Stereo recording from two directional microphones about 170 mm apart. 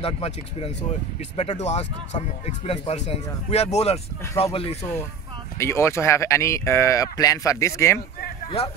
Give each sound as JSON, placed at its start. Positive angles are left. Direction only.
{"t": 0.0, "sound": "speech", "side_deg": 35}
{"t": 5.6, "sound": "speech", "side_deg": 15}
{"t": 8.6, "sound": "speech", "side_deg": 35}